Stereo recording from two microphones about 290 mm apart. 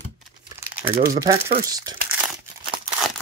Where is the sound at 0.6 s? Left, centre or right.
Centre.